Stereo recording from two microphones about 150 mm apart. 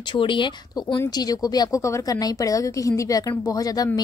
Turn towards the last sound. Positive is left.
turn(degrees=25)  # may be behind; listen again after turning